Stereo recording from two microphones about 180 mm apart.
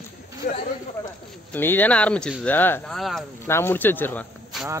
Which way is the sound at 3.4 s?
15° left (ahead or behind).